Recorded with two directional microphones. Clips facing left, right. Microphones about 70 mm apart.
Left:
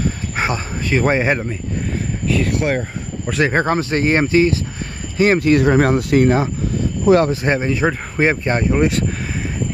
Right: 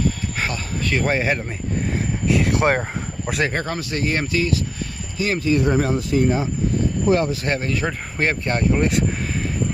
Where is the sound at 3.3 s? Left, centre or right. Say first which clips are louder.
Left 4 dB; centre.